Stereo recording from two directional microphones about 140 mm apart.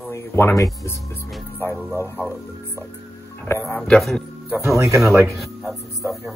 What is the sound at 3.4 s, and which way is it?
Speech, 15° left (ahead or behind).